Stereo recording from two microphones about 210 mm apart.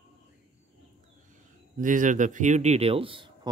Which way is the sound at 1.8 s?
40° right (ahead or behind).